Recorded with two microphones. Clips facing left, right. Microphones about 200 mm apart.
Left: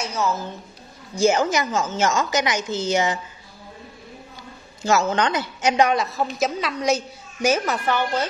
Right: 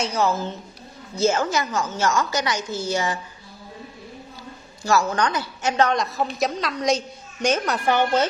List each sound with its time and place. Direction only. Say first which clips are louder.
0.0 s a woman's voice: right 2 dB; 30° right (ahead or behind)
1.1 s a woman's voice: left 2 dB; 15° left (ahead or behind)
4.8 s a woman's voice: left 1 dB; 20° left (ahead or behind); by 7.8 s 5° left (ahead or behind)
7.8 s a woman's voice: right 3 dB; 20° right (ahead or behind)